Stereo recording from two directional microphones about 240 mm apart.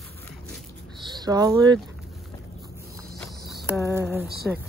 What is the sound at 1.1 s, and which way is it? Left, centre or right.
Speech, centre.